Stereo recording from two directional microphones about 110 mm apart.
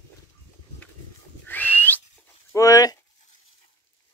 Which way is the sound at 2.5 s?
30° left (ahead or behind).